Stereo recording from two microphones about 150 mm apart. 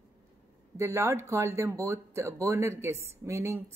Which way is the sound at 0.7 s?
20° right (ahead or behind).